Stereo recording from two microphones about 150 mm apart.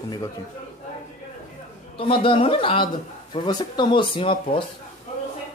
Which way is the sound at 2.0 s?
35° left (ahead or behind).